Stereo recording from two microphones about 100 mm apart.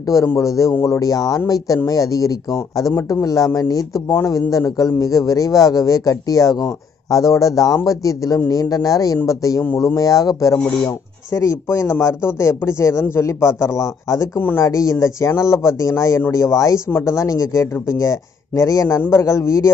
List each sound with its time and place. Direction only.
0.4 s a man's voice: 35° left (ahead or behind)